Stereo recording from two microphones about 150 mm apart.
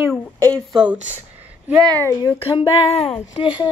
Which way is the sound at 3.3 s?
30° left (ahead or behind).